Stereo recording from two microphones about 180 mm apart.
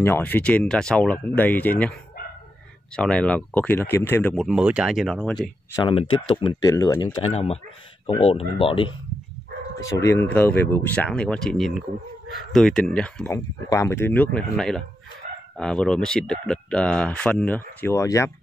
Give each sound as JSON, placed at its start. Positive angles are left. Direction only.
{"t": 0.0, "sound": "speech", "side_deg": 10}
{"t": 3.0, "sound": "speech", "side_deg": 5}
{"t": 4.5, "sound": "speech", "side_deg": -5}
{"t": 5.8, "sound": "speech", "side_deg": 25}
{"t": 9.8, "sound": "speech", "side_deg": 15}
{"t": 13.3, "sound": "speech", "side_deg": 15}